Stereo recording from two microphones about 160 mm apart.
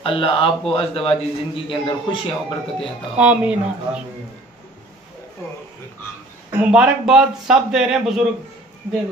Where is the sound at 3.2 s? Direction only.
10° right (ahead or behind).